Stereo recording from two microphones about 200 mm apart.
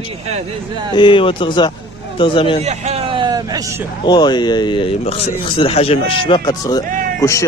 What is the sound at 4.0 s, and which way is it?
Speech, 20° left (ahead or behind).